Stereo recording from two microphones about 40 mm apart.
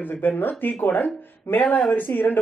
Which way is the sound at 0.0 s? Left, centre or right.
Left.